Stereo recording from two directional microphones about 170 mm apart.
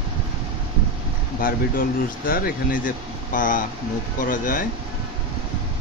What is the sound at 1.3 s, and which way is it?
Speech, 55° left (ahead or behind).